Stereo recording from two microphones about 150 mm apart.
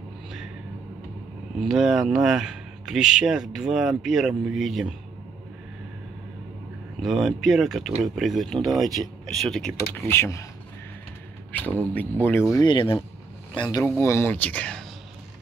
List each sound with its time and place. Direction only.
1.6 s speech: 5° right (ahead or behind)
7.0 s speech: 5° right (ahead or behind)
9.9 s speech: 15° left (ahead or behind)
11.9 s speech: 10° left (ahead or behind)
12.6 s speech: 35° left (ahead or behind); by 14.8 s 10° left (ahead or behind)